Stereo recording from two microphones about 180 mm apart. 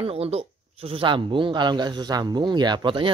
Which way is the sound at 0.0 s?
35° right (ahead or behind).